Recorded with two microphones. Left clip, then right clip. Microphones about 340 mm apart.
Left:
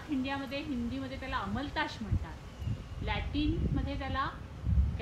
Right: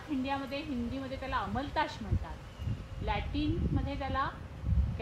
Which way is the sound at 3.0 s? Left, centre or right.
Centre.